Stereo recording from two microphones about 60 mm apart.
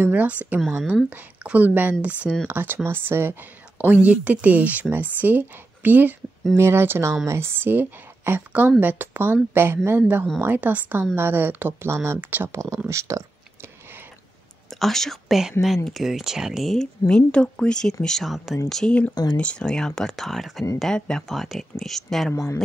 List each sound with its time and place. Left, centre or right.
0.0 s speech: right
6.5 s speech: right
12.2 s speech: right
12.4 s speech: right
14.7 s speech: centre
17.1 s speech: centre
19.3 s speech: centre
20.9 s speech: centre
21.4 s speech: centre
22.3 s speech: left